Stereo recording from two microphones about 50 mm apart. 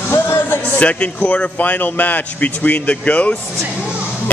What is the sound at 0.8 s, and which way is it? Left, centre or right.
A man's voice, left.